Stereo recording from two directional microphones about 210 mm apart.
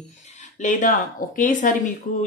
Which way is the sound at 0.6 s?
35° left (ahead or behind).